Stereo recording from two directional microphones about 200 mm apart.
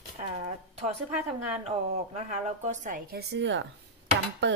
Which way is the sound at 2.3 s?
35° right (ahead or behind).